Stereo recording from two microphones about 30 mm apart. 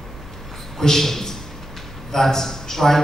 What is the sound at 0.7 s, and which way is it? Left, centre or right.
A man's voice, centre.